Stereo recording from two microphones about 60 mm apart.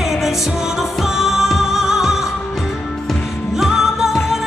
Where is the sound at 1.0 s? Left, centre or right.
Centre.